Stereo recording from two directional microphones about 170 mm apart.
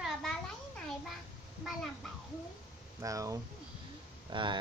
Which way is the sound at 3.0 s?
20° right (ahead or behind).